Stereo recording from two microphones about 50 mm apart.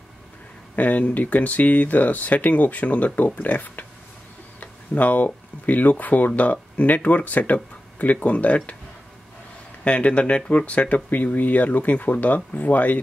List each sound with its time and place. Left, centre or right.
0.7 s speech: left
9.8 s speech: left